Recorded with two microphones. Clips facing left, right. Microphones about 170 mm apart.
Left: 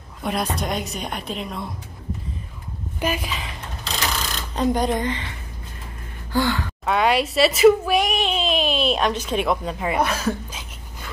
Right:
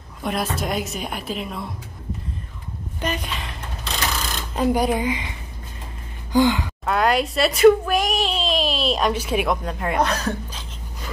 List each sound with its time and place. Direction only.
0.2 s speech: centre (ahead or behind)
3.0 s a woman's voice: 5° left (ahead or behind)
4.6 s speech: 5° right (ahead or behind)
6.3 s speech: 15° right (ahead or behind)
6.9 s speech: centre (ahead or behind)
9.5 s speech: centre (ahead or behind)